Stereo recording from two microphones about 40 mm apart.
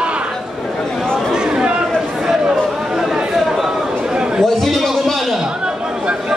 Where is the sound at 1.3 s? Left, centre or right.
Right.